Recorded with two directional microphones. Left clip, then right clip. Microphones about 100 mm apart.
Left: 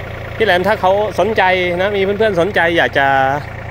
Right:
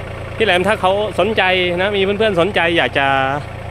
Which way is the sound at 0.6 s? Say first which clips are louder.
Left 2 dB; 20° right (ahead or behind).